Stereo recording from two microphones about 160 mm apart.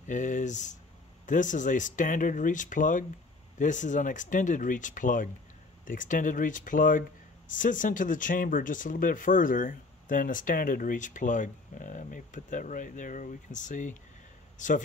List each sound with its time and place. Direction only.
0.0 s speech: 50° left (ahead or behind)